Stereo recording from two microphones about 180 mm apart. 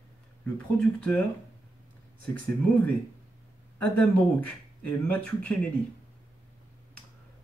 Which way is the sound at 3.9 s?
10° left (ahead or behind).